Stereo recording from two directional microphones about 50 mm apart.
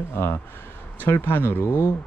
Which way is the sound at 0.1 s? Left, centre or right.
Left.